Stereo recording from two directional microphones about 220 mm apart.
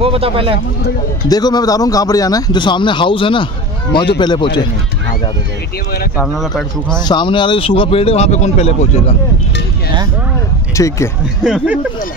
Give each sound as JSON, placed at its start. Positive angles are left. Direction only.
{"t": 0.0, "sound": "speech", "side_deg": -25}
{"t": 1.3, "sound": "speech", "side_deg": 15}
{"t": 6.1, "sound": "speech", "side_deg": 0}
{"t": 7.1, "sound": "speech", "side_deg": 20}
{"t": 10.8, "sound": "speech", "side_deg": 15}
{"t": 11.4, "sound": "speech", "side_deg": -5}